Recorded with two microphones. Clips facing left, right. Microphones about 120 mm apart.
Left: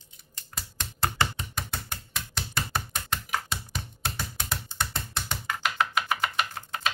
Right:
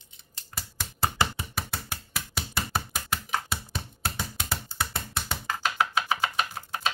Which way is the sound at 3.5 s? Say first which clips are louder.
Right 1 dB; 5° right (ahead or behind).